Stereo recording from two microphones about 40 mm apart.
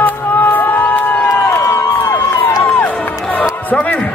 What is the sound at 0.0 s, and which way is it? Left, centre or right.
Crowd, left.